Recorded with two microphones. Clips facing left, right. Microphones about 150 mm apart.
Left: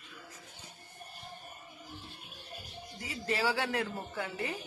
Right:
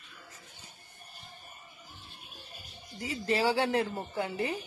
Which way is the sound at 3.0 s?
30° right (ahead or behind).